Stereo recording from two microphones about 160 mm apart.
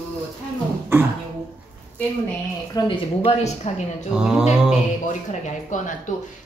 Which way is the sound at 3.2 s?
45° left (ahead or behind).